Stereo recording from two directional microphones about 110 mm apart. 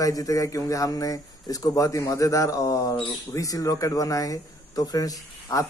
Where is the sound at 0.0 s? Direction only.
30° left (ahead or behind).